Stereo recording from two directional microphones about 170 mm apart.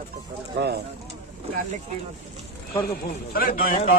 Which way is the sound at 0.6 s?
85° right.